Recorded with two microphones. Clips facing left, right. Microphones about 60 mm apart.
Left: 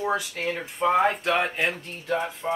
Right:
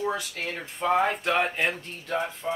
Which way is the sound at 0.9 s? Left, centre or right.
Centre.